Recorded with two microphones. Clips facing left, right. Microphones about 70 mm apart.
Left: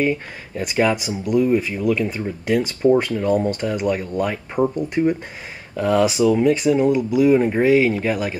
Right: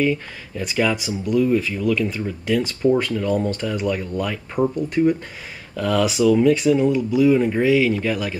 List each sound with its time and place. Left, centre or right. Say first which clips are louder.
0.0 s speech: even; left
1.0 s speech: left 1 dB; centre
5.8 s speech: left 2 dB; left